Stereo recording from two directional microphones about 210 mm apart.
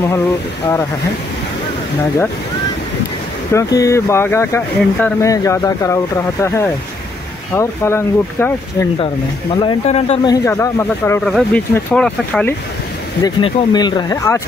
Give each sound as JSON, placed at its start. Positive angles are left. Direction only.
{"t": 3.5, "sound": "speech", "side_deg": 15}
{"t": 9.6, "sound": "speech", "side_deg": 25}
{"t": 10.3, "sound": "speech", "side_deg": 15}
{"t": 13.2, "sound": "speech", "side_deg": 20}